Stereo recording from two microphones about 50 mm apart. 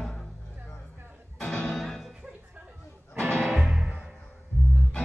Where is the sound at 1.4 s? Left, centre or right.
Centre.